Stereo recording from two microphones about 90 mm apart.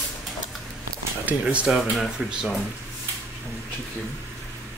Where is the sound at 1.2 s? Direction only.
15° right (ahead or behind).